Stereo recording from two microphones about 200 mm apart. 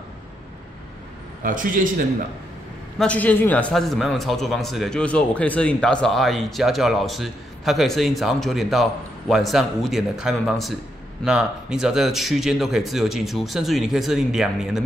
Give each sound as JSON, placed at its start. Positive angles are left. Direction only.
{"t": 1.4, "sound": "a man's voice", "side_deg": -40}
{"t": 3.0, "sound": "a man's voice", "side_deg": 5}